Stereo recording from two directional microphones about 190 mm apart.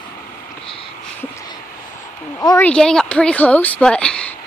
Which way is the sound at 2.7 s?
5° left (ahead or behind).